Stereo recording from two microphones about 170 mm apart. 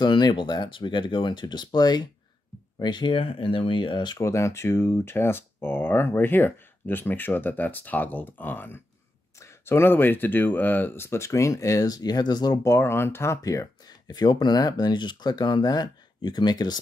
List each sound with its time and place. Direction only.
0.0 s speech: 25° left (ahead or behind)